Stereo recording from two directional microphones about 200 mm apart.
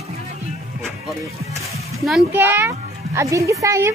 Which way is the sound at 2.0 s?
5° right (ahead or behind).